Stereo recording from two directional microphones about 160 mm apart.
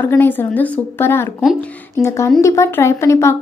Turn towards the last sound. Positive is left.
turn(degrees=15)  # may be behind; listen again after turning